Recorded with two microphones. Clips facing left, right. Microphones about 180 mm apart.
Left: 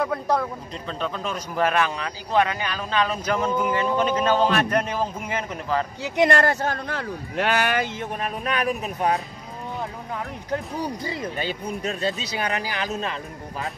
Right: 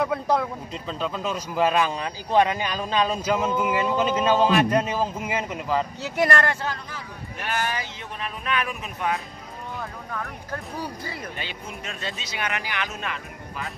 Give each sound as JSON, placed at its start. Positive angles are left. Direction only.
{"t": 0.0, "sound": "speech", "side_deg": 0}
{"t": 2.0, "sound": "a man's voice", "side_deg": -25}
{"t": 6.0, "sound": "speech", "side_deg": 20}
{"t": 6.3, "sound": "speech", "side_deg": 40}
{"t": 9.8, "sound": "speech", "side_deg": 20}
{"t": 11.3, "sound": "speech", "side_deg": 40}